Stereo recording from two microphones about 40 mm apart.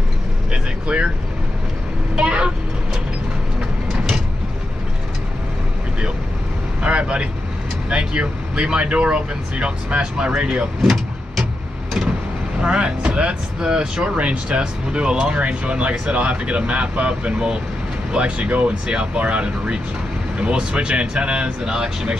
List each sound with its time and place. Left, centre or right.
0.5 s vehicle: right
2.1 s vehicle: right
3.9 s vehicle: centre
6.8 s vehicle: right
7.9 s speech: right
10.8 s vehicle: centre
12.5 s speech: right
14.0 s speech: right; by 22.1 s centre